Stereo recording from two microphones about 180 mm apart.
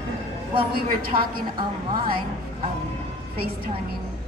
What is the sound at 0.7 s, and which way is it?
Speech, 55° right (ahead or behind).